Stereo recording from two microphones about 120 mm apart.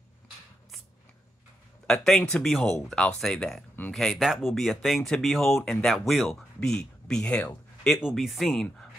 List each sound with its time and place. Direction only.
1.9 s speech: 5° left (ahead or behind)